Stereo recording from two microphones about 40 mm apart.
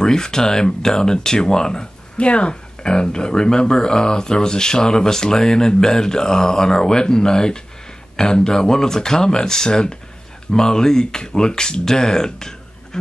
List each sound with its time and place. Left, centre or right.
0.0 s speech: centre
2.1 s speech: left